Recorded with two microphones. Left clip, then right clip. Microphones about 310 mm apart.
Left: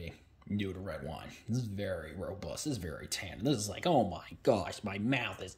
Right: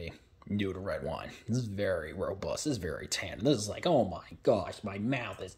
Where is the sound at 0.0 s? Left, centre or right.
Centre.